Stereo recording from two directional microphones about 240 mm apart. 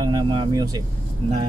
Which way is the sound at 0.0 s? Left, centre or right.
Centre.